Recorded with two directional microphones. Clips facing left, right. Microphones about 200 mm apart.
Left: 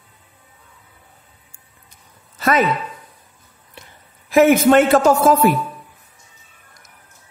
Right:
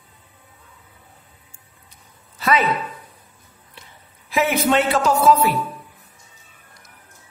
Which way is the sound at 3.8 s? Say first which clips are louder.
Left 4 dB; 50° left (ahead or behind).